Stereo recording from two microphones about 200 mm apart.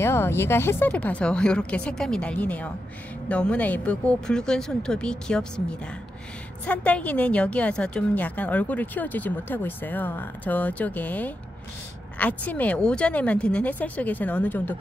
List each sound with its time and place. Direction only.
0.0 s a woman's voice: 10° left (ahead or behind)